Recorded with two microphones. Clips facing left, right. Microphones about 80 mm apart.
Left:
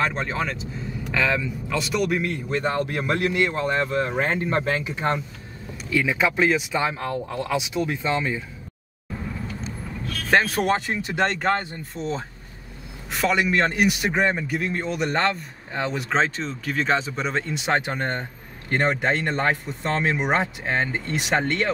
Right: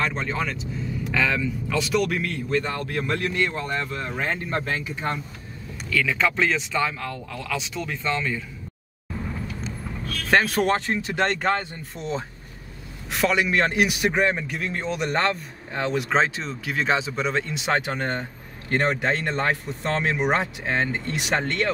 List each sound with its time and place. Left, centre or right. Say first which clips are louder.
0.3 s a man's voice: even; centre
2.5 s speech: left 1 dB; left
3.8 s speech: left 5 dB; left; by 7.0 s centre
7.0 s speech: left 5 dB; left
7.5 s speech: left 4 dB; centre
10.2 s a man's voice: even; centre